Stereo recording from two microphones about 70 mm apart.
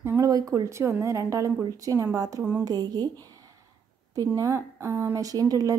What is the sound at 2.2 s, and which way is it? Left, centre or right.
Speech, right.